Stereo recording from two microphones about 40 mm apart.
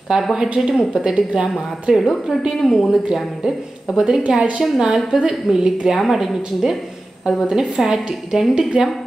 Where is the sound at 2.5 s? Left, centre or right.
Centre.